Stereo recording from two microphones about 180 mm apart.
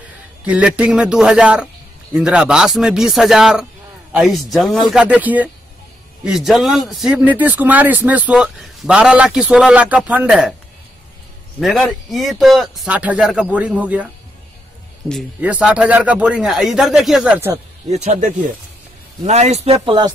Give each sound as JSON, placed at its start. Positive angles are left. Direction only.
{"t": 0.5, "sound": "speech", "side_deg": -5}
{"t": 11.6, "sound": "speech", "side_deg": 0}
{"t": 15.4, "sound": "speech", "side_deg": -5}
{"t": 17.8, "sound": "speech", "side_deg": -35}